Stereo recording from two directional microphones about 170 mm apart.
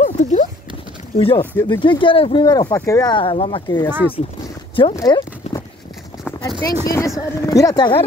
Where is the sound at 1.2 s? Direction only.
30° left (ahead or behind).